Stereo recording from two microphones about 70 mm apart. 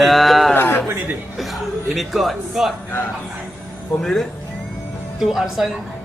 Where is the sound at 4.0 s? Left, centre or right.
Centre.